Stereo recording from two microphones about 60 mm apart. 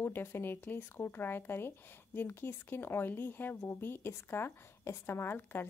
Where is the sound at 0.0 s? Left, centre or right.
Left.